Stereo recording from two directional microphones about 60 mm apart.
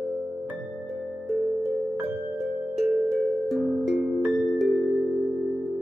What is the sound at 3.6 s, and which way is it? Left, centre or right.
Music, centre.